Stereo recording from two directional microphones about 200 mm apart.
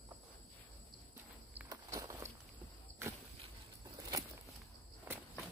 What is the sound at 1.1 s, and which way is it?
Walk, 15° right (ahead or behind).